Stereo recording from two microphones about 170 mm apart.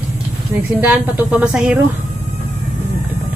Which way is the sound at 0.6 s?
10° right (ahead or behind).